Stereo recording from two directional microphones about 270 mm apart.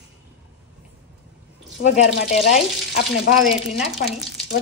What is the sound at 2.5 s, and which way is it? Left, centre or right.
Frying, left.